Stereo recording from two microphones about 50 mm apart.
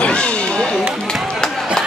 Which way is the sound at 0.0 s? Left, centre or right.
Left.